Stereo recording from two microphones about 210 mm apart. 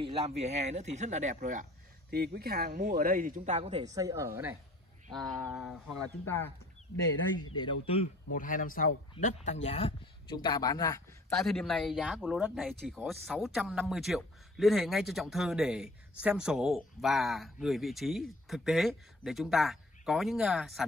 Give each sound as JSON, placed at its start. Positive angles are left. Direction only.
{"t": 0.0, "sound": "speech", "side_deg": -30}
{"t": 3.9, "sound": "speech", "side_deg": -15}
{"t": 5.1, "sound": "speech", "side_deg": 0}
{"t": 6.2, "sound": "speech", "side_deg": 10}
{"t": 7.5, "sound": "speech", "side_deg": 25}
{"t": 8.3, "sound": "speech", "side_deg": 40}
{"t": 11.2, "sound": "speech", "side_deg": 0}